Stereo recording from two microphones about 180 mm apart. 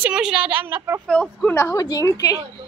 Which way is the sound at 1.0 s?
5° left (ahead or behind).